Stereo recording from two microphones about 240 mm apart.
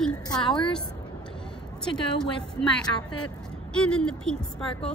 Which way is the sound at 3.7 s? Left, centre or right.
Centre.